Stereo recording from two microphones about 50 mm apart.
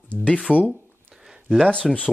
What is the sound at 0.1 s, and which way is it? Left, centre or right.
Speech, left.